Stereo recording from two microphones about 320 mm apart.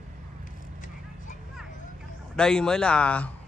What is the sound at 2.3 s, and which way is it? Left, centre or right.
Speech, centre.